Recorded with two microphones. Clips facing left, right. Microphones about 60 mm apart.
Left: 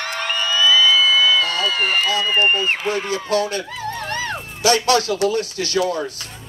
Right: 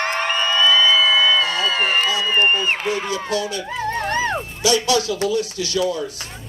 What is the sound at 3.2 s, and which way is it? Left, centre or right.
Speech, left.